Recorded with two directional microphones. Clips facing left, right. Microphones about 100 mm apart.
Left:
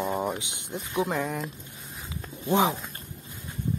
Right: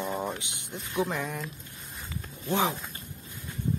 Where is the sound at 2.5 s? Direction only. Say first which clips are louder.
Left 4 dB; 15° left (ahead or behind).